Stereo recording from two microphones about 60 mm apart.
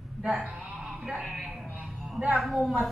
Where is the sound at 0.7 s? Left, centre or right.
Centre.